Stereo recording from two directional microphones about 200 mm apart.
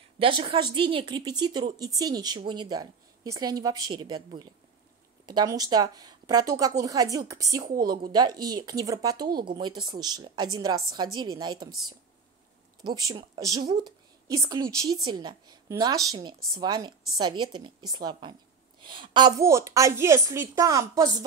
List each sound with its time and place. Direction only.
0.2 s a woman's voice: 25° right (ahead or behind)
12.8 s a woman's voice: 20° right (ahead or behind)